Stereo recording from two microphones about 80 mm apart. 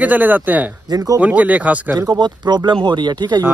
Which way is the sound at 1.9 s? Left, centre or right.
Right.